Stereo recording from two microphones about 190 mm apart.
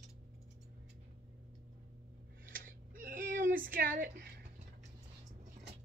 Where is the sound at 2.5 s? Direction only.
45° right (ahead or behind).